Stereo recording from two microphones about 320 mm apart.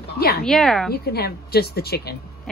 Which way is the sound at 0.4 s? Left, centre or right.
Centre.